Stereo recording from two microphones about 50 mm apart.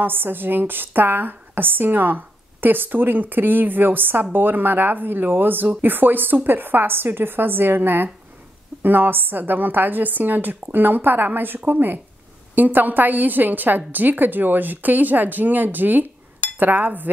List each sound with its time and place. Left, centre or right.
0.0 s a woman's voice: right